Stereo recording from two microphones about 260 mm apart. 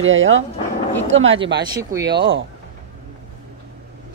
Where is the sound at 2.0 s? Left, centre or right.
Right.